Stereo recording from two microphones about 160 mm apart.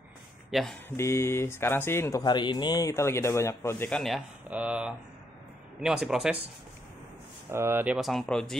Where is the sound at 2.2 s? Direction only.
30° left (ahead or behind).